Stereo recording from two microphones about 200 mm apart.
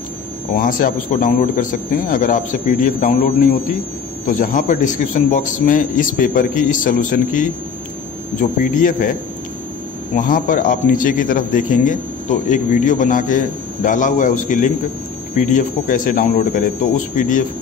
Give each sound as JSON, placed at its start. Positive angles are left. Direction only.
{"t": 0.6, "sound": "speech", "side_deg": 45}
{"t": 4.3, "sound": "a man's voice", "side_deg": 40}
{"t": 10.1, "sound": "a man's voice", "side_deg": 45}